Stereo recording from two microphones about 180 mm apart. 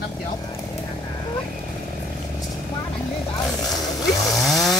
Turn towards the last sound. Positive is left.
turn(degrees=0)  # may be behind; listen again after turning